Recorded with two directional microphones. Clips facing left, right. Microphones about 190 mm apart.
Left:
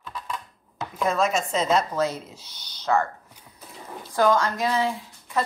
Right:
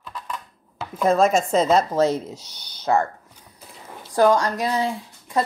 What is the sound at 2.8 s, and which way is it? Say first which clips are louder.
Speech: right 3 dB; 40° right (ahead or behind).